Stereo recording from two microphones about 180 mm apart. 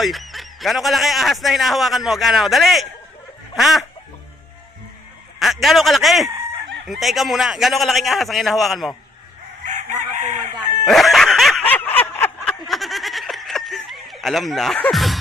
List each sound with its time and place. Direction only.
0.0 s speech: centre (ahead or behind)
5.4 s speech: centre (ahead or behind)
9.7 s chicken: 45° right (ahead or behind)
10.9 s snicker: centre (ahead or behind)
12.5 s snicker: centre (ahead or behind)